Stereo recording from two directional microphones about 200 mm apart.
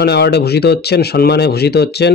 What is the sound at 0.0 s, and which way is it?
Speech, 55° left (ahead or behind).